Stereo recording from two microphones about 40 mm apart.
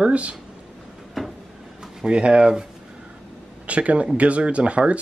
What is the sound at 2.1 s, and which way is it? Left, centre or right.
Speech, right.